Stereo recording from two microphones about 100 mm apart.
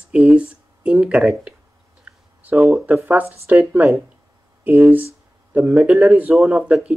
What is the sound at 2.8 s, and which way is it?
Speech, 20° right (ahead or behind).